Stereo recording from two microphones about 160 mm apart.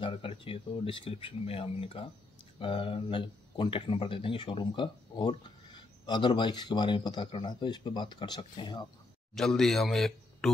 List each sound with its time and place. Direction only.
0.0 s speech: 35° left (ahead or behind)
9.3 s speech: 5° left (ahead or behind)